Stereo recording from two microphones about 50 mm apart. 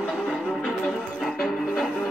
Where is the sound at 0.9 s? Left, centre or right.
Left.